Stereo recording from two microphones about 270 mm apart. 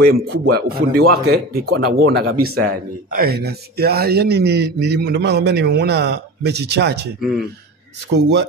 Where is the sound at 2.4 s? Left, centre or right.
Right.